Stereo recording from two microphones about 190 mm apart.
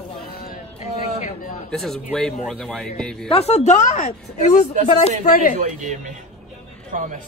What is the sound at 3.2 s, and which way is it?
Speech, 30° left (ahead or behind).